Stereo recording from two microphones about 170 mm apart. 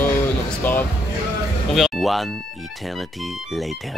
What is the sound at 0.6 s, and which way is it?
Music, 10° left (ahead or behind).